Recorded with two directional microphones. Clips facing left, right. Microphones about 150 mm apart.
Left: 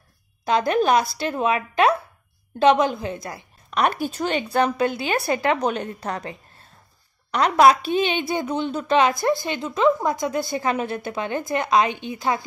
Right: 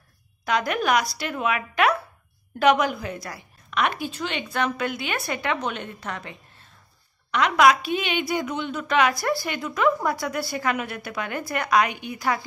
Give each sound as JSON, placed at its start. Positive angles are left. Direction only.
{"t": 0.5, "sound": "a woman's voice", "side_deg": 30}
{"t": 3.7, "sound": "a woman's voice", "side_deg": 40}